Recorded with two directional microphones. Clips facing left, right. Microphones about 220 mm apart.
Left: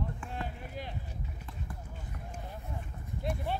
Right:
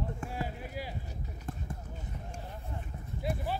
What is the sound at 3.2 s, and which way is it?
Clip-clop, centre (ahead or behind).